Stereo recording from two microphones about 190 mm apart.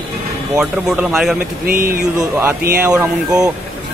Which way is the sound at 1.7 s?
50° right (ahead or behind).